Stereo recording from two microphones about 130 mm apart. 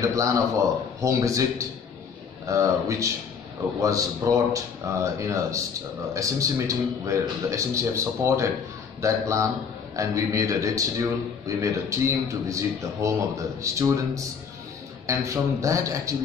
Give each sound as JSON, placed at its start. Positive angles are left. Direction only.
{"t": 0.0, "sound": "a man's voice", "side_deg": -25}
{"t": 2.4, "sound": "a man's voice", "side_deg": -25}